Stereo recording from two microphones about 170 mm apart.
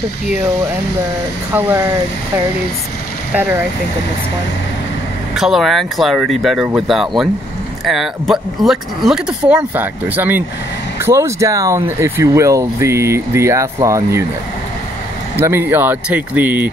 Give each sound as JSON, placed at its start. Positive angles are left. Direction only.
{"t": 3.3, "sound": "speech", "side_deg": -15}
{"t": 5.3, "sound": "speech", "side_deg": 0}
{"t": 15.3, "sound": "speech", "side_deg": -15}